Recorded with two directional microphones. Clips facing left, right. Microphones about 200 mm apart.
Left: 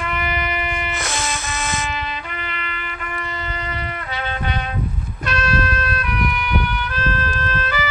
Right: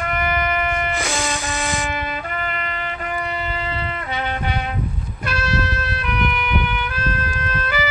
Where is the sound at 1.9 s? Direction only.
50° right (ahead or behind).